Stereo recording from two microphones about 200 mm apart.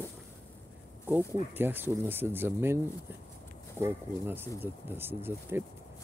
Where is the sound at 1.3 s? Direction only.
10° right (ahead or behind).